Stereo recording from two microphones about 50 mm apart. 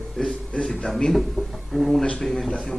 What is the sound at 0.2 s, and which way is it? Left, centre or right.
Speech, centre.